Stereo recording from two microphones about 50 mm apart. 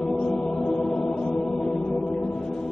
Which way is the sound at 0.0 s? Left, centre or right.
Centre.